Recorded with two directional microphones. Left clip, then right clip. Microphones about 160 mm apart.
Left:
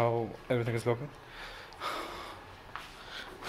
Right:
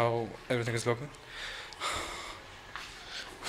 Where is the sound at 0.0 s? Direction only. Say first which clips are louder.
Even; 5° left (ahead or behind).